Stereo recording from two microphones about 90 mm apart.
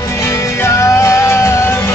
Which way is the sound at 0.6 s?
35° left (ahead or behind).